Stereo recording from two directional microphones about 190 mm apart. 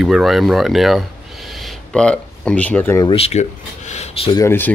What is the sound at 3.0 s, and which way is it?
Speech, 30° left (ahead or behind).